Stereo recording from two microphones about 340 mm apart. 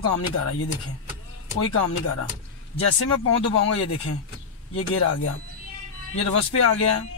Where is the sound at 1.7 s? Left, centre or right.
Left.